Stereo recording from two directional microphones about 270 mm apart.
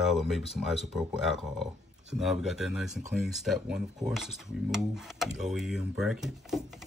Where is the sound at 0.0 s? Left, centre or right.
Centre.